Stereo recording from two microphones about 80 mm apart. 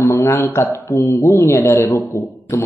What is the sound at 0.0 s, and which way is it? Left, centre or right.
A man's voice, left.